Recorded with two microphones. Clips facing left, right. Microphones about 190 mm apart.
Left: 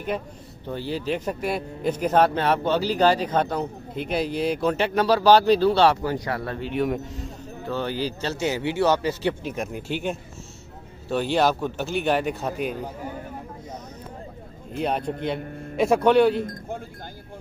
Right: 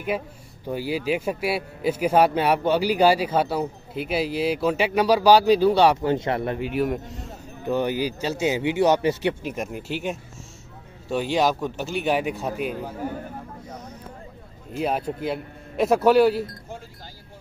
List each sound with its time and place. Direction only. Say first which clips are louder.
0.7 s speech: right 2 dB; 10° right (ahead or behind)
6.6 s speech: right 1 dB; 5° right (ahead or behind)
7.6 s speech: right 4 dB; 15° right (ahead or behind)
9.4 s speech: even; 5° right (ahead or behind)
14.8 s speech: even; 5° right (ahead or behind)
16.4 s speech: left 5 dB; 55° left (ahead or behind)